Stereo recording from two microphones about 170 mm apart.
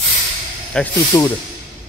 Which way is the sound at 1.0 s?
20° left (ahead or behind).